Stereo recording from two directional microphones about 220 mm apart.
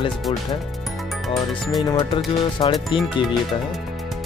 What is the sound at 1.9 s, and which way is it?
Music, 20° left (ahead or behind).